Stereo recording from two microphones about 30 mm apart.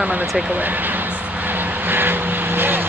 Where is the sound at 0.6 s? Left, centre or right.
Right.